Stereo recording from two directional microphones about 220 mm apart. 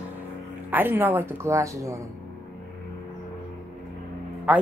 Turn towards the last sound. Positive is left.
turn(degrees=-5)  # may be behind; listen again after turning